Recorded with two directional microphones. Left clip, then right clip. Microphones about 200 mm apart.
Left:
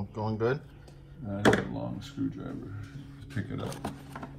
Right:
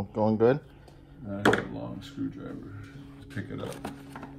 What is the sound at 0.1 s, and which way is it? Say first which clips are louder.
Speech: right 7 dB; 45° right (ahead or behind).